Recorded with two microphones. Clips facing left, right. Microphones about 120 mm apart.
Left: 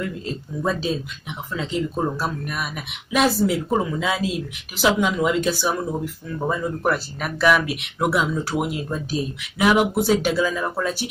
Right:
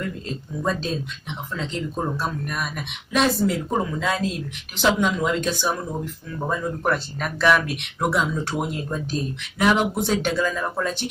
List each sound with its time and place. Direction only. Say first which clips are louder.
0.6 s speech: left 2 dB; 5° left (ahead or behind)